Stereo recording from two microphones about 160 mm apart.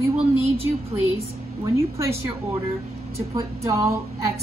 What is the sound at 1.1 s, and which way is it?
A woman's voice, 15° right (ahead or behind).